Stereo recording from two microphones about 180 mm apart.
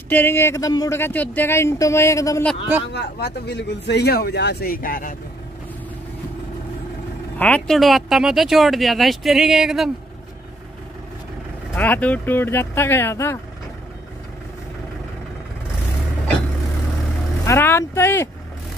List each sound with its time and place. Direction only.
0.1 s speech: 10° left (ahead or behind)
2.9 s speech: 70° left (ahead or behind); by 5.1 s 50° left (ahead or behind)
7.3 s speech: 5° left (ahead or behind)
11.7 s speech: 10° left (ahead or behind)
17.5 s speech: 15° left (ahead or behind)